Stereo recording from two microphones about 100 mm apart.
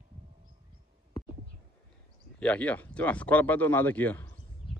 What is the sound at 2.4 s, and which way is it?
Speech, 15° left (ahead or behind).